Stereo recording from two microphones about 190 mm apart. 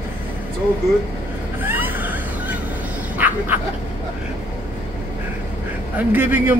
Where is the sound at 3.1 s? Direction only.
10° right (ahead or behind).